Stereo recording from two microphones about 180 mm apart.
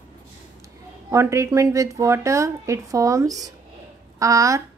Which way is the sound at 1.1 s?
15° right (ahead or behind).